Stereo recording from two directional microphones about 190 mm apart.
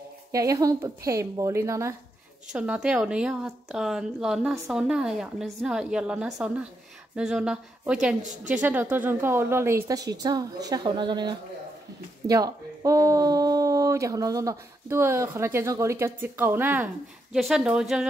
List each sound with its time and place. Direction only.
0.3 s speech: 15° right (ahead or behind)